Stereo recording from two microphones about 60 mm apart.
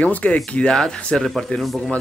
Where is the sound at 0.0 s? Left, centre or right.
Left; by 1.8 s centre.